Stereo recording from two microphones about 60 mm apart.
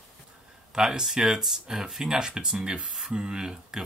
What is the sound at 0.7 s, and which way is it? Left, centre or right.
Speech, centre.